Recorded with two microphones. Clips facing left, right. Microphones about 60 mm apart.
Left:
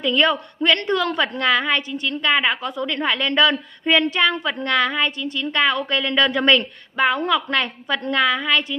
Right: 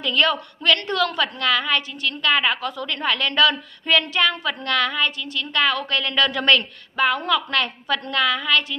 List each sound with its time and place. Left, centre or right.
0.0 s a woman's voice: left